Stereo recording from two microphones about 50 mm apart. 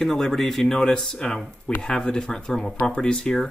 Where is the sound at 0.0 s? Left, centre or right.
Centre.